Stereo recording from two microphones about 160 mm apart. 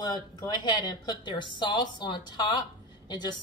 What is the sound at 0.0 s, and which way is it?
A woman's voice, 25° left (ahead or behind).